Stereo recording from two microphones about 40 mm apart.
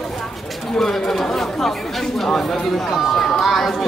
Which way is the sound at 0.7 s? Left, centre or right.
Centre.